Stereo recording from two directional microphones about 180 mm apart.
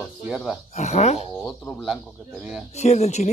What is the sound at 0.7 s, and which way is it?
Speech, 35° left (ahead or behind).